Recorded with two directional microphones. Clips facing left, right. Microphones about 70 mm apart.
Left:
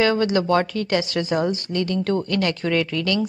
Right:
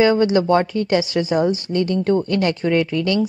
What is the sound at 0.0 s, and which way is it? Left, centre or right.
Speech, right.